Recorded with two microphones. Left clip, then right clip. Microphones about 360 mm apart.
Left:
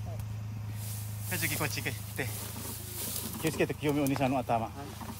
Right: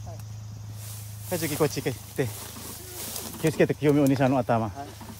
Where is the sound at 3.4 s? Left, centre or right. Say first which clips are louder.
Right 8 dB; right.